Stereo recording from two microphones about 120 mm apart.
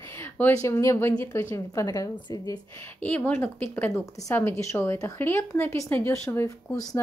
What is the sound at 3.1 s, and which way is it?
A woman's voice, 15° left (ahead or behind).